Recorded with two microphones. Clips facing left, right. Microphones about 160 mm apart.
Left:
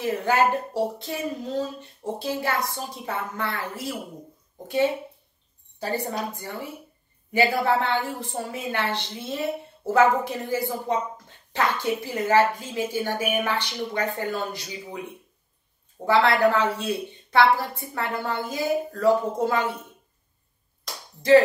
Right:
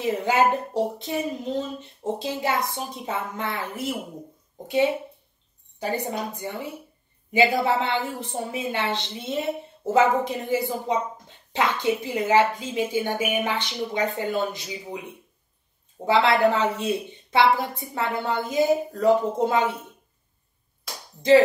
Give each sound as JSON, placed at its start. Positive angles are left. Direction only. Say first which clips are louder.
{"t": 0.0, "sound": "a woman's voice", "louder": "right 1 dB", "side_deg": -20}
{"t": 5.8, "sound": "a woman's voice", "louder": "right 1 dB", "side_deg": -15}
{"t": 16.1, "sound": "a woman's voice", "louder": "even", "side_deg": -20}